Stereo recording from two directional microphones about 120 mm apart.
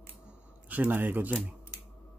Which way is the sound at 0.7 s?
15° right (ahead or behind).